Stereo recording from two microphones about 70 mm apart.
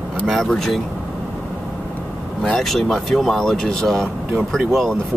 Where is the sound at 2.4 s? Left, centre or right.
Centre.